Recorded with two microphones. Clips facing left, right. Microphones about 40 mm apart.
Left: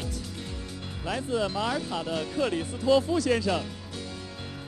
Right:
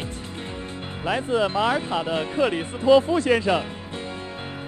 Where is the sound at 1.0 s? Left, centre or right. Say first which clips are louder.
Right 6 dB; right.